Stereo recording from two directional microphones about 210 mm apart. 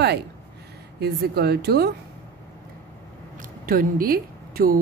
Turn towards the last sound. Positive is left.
turn(degrees=-45)  # may be behind; listen again after turning